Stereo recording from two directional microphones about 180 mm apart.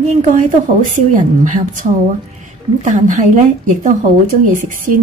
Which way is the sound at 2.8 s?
45° right (ahead or behind).